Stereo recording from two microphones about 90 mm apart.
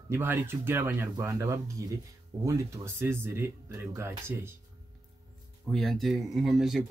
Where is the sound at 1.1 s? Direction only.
35° right (ahead or behind).